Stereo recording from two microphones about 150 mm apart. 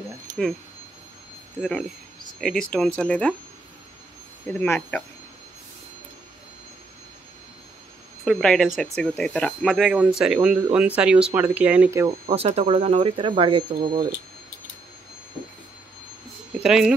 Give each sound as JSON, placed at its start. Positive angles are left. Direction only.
{"t": 1.6, "sound": "speech", "side_deg": 5}
{"t": 4.5, "sound": "speech", "side_deg": 10}
{"t": 8.3, "sound": "speech", "side_deg": 5}
{"t": 12.3, "sound": "speech", "side_deg": -45}
{"t": 16.6, "sound": "speech", "side_deg": -5}